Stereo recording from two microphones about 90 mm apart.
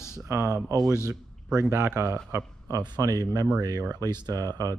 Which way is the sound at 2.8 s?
45° right (ahead or behind).